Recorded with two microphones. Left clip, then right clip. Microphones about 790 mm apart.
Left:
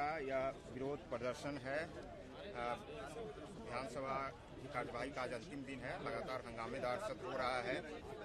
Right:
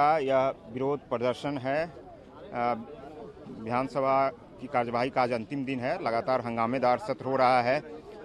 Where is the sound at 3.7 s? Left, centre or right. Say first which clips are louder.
Right 17 dB; right.